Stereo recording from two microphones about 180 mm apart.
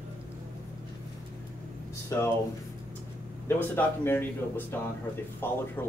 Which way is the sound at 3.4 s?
10° left (ahead or behind).